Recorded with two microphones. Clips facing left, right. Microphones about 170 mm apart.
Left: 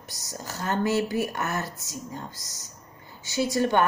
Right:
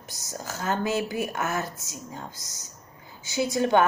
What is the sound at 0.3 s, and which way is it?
A woman's voice, centre (ahead or behind).